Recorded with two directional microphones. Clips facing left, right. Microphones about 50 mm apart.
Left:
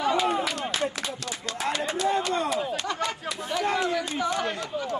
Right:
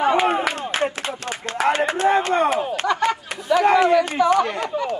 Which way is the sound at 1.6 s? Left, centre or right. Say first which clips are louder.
Right 9 dB; right.